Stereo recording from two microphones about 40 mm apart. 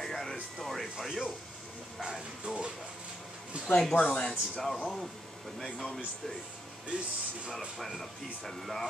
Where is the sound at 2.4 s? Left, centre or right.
Right.